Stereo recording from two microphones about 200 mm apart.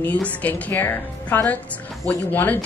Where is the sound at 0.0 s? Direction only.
5° left (ahead or behind).